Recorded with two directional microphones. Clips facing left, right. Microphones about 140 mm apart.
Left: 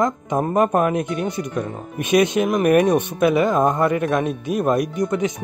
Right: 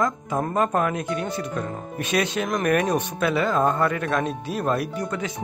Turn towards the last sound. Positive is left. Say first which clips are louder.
# left 7 dB
turn(degrees=15)  # may be behind; listen again after turning